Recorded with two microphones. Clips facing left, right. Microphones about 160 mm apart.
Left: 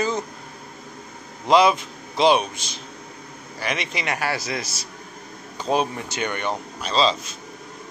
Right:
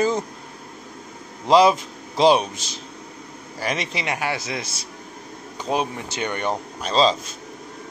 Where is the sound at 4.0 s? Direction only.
20° right (ahead or behind).